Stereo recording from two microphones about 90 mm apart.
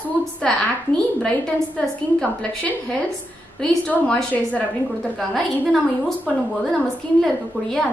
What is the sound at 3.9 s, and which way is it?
Speech, 15° left (ahead or behind).